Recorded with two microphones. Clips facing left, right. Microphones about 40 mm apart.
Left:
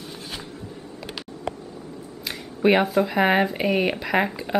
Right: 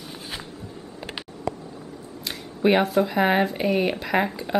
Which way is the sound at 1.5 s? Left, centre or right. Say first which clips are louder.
Right 2 dB; left.